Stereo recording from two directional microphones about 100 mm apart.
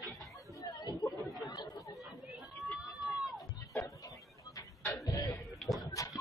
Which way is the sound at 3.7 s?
35° left (ahead or behind).